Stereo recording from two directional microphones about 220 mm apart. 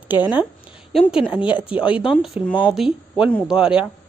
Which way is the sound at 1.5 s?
5° right (ahead or behind).